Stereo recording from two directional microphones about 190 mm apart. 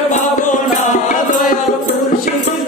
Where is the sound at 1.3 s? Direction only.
45° left (ahead or behind).